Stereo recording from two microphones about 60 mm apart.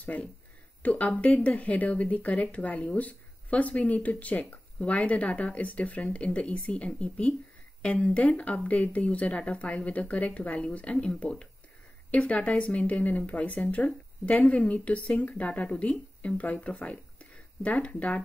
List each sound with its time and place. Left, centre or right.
0.0 s speech: left